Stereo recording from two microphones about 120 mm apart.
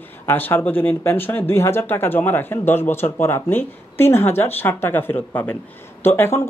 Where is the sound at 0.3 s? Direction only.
20° left (ahead or behind).